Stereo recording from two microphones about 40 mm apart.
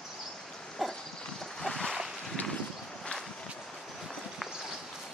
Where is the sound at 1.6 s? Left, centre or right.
Centre.